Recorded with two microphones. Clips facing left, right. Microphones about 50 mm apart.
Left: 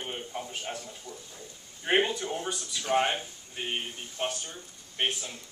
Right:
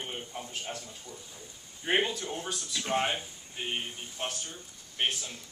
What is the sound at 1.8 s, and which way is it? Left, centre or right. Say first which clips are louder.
Speech: left 3 dB; centre.